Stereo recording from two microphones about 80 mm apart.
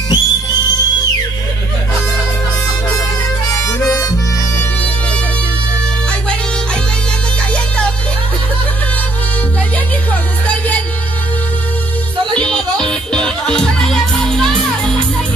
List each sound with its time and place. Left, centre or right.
0.1 s music: left
3.4 s harmonica: left
7.5 s music: centre
10.4 s music: centre
12.4 s music: centre